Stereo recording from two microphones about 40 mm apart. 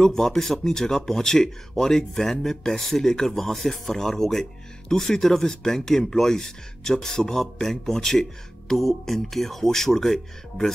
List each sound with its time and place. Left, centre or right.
0.0 s speech: centre